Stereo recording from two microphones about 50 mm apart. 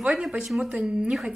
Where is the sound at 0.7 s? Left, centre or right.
Right.